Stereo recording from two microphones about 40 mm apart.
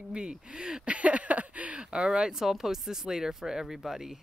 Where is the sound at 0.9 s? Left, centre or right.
Right.